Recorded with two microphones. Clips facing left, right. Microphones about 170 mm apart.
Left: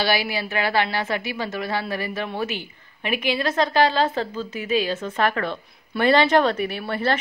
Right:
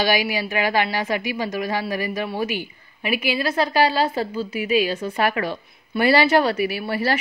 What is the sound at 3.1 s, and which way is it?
Speech, 10° right (ahead or behind).